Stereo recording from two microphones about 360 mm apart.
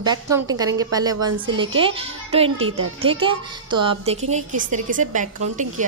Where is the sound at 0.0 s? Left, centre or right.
Centre.